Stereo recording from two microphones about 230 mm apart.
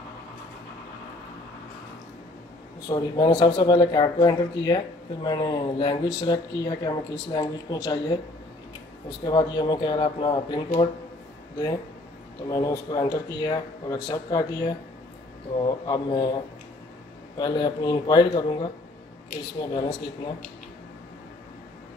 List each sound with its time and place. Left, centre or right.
2.9 s speech: centre
9.2 s speech: centre
12.4 s speech: centre
17.4 s speech: centre